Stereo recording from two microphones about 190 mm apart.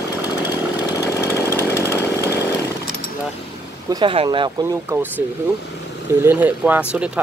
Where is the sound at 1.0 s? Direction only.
15° left (ahead or behind).